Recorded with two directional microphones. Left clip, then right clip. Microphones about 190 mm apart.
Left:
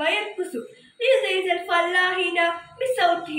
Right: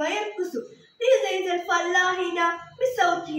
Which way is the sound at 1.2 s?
15° right (ahead or behind).